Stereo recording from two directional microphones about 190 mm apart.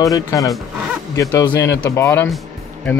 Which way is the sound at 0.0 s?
15° left (ahead or behind).